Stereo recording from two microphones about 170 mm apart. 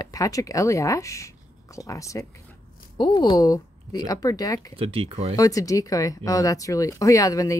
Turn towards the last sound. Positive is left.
turn(degrees=20)  # may be behind; listen again after turning